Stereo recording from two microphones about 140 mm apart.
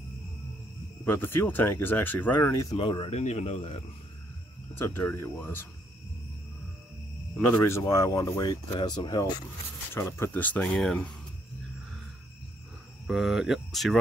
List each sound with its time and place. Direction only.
1.0 s speech: 15° left (ahead or behind)
2.7 s speech: 35° left (ahead or behind)
3.2 s speech: 50° left (ahead or behind)
4.7 s speech: 15° left (ahead or behind)
7.3 s speech: 15° left (ahead or behind); by 9.3 s 30° left (ahead or behind)
9.9 s speech: 20° left (ahead or behind)
13.0 s speech: centre (ahead or behind)